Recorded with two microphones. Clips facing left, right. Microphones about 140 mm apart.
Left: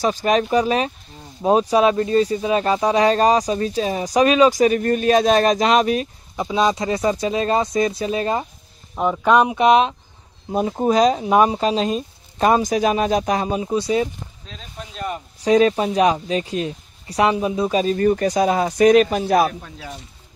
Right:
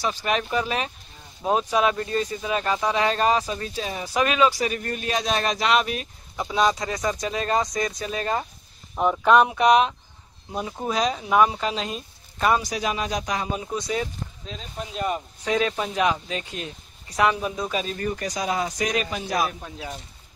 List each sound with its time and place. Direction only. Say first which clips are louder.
0.0 s speech: left 7 dB; 40° left (ahead or behind)
6.3 s speech: left 3 dB; 20° left (ahead or behind)
8.9 s speech: left 2 dB; 5° left (ahead or behind)
9.6 s speech: left 3 dB; 25° left (ahead or behind); by 11.2 s 45° left (ahead or behind)
11.2 s speech: left 4 dB; 35° left (ahead or behind)
12.6 s speech: left 9 dB; 50° left (ahead or behind)
13.5 s speech: left 7 dB; 20° left (ahead or behind)
13.7 s speech: left 8 dB; 30° left (ahead or behind)
15.4 s speech: left 9 dB; 35° left (ahead or behind)
17.4 s speech: left 7 dB; 15° left (ahead or behind)
17.6 s speech: left 10 dB; 35° left (ahead or behind); by 19.5 s 55° left (ahead or behind)
19.6 s speech: even; 10° right (ahead or behind)